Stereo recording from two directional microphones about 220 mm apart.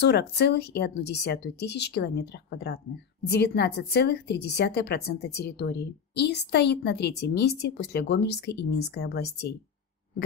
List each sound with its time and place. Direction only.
0.0 s a woman's voice: 50° left (ahead or behind)